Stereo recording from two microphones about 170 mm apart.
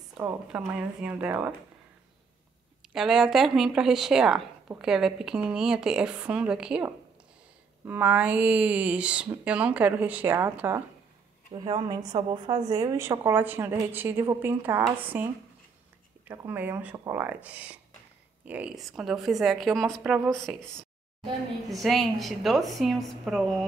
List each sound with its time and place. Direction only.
0.2 s a woman's voice: 10° right (ahead or behind)
2.9 s a woman's voice: centre (ahead or behind)
11.5 s a woman's voice: 25° right (ahead or behind); by 15.2 s 10° right (ahead or behind)
16.3 s a woman's voice: 10° right (ahead or behind)